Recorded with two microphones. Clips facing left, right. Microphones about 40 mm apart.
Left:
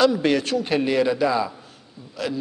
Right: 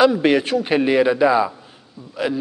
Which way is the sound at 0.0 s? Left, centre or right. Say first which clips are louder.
Right 4 dB; right.